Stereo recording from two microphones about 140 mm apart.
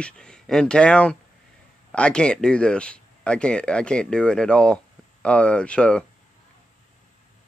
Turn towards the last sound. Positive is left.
turn(degrees=5)  # may be behind; listen again after turning